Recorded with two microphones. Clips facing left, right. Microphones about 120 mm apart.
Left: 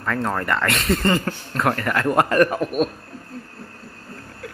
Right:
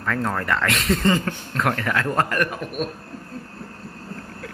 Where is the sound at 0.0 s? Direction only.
5° left (ahead or behind).